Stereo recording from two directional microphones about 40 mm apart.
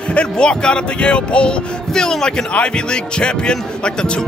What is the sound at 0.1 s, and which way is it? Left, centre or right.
Speech, left.